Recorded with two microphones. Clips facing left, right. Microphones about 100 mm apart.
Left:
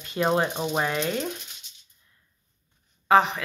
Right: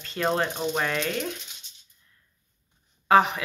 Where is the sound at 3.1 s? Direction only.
Centre (ahead or behind).